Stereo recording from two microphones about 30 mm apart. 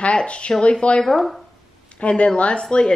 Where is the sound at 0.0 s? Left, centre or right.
Left.